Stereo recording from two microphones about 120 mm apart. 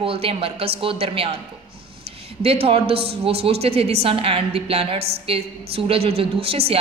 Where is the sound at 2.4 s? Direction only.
55° right (ahead or behind).